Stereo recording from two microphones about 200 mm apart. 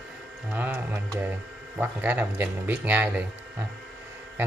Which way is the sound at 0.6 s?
10° right (ahead or behind).